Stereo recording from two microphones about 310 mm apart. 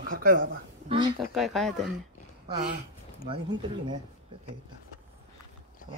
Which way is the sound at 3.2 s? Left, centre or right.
Centre.